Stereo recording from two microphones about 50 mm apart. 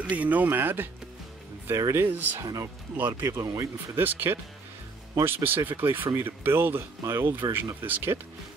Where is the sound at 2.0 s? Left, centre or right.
Right.